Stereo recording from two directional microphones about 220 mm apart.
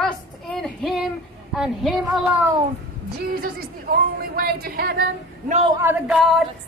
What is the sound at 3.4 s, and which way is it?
Speech, 40° right (ahead or behind).